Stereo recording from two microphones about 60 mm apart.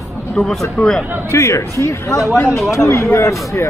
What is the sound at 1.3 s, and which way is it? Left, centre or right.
Speech, left.